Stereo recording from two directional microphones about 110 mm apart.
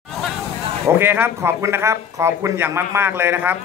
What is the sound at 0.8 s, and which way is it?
A woman's voice, 20° right (ahead or behind).